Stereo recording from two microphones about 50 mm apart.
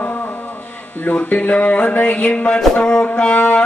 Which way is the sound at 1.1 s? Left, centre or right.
Left.